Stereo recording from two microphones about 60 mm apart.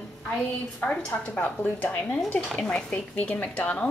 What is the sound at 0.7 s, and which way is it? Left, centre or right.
A woman's voice, centre.